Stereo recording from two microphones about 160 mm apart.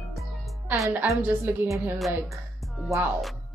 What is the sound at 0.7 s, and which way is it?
A woman's voice, 15° right (ahead or behind).